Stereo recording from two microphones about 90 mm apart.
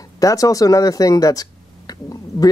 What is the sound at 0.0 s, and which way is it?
Speech, 40° left (ahead or behind).